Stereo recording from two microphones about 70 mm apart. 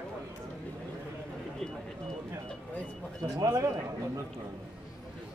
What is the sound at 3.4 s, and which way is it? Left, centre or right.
Speech, right.